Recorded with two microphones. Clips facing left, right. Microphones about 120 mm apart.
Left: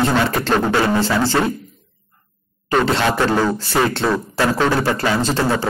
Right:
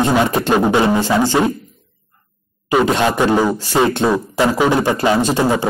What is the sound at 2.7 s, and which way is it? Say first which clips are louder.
Speech: right 2 dB; 15° right (ahead or behind).